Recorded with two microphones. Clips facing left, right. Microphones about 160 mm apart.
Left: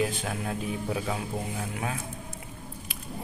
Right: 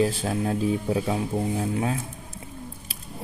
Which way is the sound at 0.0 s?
30° right (ahead or behind).